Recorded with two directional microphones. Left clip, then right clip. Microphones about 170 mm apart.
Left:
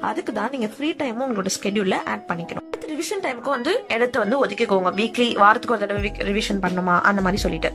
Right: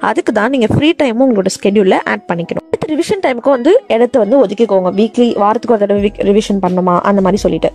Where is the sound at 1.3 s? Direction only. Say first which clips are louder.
Right 12 dB; 45° right (ahead or behind).